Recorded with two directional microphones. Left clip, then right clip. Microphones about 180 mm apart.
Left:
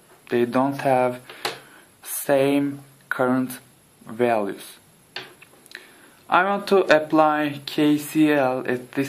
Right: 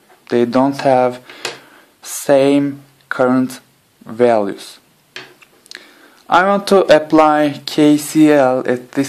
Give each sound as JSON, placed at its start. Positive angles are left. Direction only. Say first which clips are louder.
{"t": 0.3, "sound": "speech", "louder": "right 7 dB", "side_deg": -35}
{"t": 5.7, "sound": "speech", "louder": "right 6 dB", "side_deg": -40}